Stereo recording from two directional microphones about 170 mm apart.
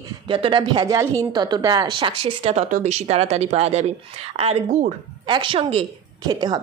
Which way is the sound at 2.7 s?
45° right (ahead or behind).